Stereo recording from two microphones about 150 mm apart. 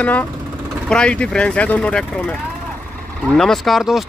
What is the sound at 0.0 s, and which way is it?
Speech, 10° left (ahead or behind).